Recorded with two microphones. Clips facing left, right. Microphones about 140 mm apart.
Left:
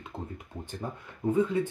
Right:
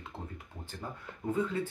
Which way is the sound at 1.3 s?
15° left (ahead or behind).